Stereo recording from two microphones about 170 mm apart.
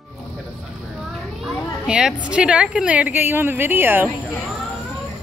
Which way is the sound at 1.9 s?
5° right (ahead or behind).